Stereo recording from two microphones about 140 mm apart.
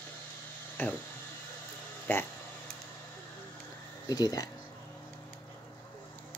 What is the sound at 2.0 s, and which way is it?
Speech, 10° left (ahead or behind).